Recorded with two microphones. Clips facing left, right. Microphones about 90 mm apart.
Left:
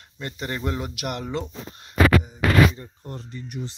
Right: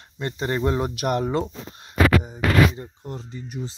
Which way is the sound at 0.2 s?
25° right (ahead or behind).